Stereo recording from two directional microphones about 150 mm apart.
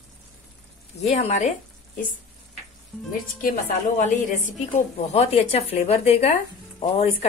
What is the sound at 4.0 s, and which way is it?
Speech, 60° left (ahead or behind).